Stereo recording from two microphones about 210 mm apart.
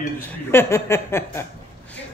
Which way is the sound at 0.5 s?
10° left (ahead or behind).